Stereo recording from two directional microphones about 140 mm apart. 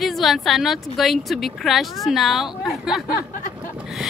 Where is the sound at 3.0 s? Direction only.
90° left.